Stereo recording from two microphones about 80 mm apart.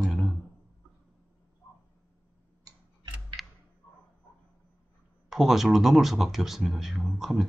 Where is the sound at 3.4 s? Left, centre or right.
Centre.